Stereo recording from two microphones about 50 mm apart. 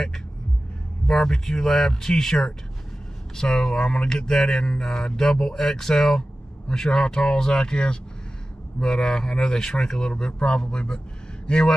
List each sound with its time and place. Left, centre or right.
1.0 s speech: centre